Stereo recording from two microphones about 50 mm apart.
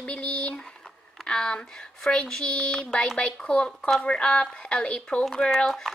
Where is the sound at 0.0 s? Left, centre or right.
Centre.